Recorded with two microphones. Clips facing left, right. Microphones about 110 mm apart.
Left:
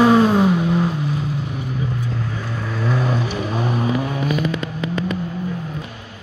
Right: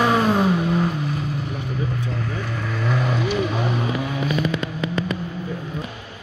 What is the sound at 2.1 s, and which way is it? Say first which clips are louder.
Vehicle: left 1 dB; 10° left (ahead or behind).